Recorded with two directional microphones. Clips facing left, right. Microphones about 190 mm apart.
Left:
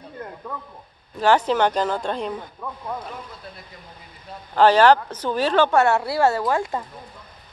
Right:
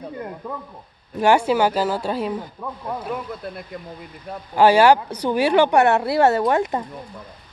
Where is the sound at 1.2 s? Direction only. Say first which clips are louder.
Right 1 dB; 10° right (ahead or behind).